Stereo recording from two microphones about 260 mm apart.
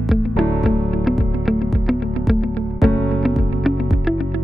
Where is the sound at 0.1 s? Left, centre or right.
Centre.